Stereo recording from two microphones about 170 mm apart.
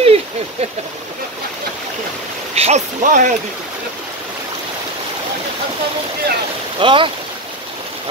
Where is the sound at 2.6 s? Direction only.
40° right (ahead or behind).